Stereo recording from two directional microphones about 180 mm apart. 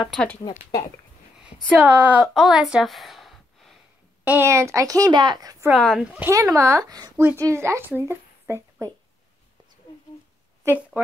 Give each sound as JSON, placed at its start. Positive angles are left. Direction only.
{"t": 0.1, "sound": "speech", "side_deg": 5}
{"t": 0.4, "sound": "speech", "side_deg": 20}
{"t": 1.8, "sound": "a woman's voice", "side_deg": -10}
{"t": 2.3, "sound": "a sound", "side_deg": 0}
{"t": 4.2, "sound": "a woman's voice", "side_deg": -10}
{"t": 5.7, "sound": "a woman's voice", "side_deg": 0}
{"t": 10.6, "sound": "speech", "side_deg": -10}